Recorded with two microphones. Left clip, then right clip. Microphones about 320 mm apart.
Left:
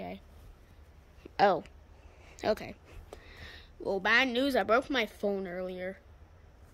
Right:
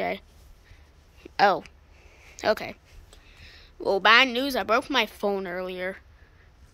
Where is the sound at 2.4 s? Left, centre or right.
Centre.